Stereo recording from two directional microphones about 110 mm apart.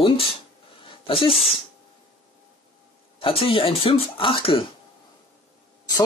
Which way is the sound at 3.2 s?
55° left (ahead or behind).